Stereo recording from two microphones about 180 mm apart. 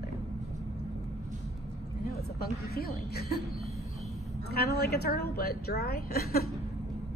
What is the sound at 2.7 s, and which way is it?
Speech, 60° left (ahead or behind).